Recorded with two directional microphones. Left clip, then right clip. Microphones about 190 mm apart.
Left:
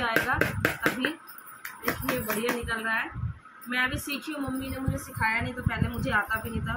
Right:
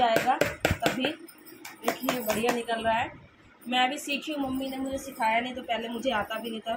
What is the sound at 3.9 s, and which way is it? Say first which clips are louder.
Speech: right 2 dB; centre (ahead or behind).